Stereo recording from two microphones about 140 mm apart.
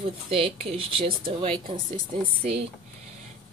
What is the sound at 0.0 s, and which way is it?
Speech, 40° right (ahead or behind).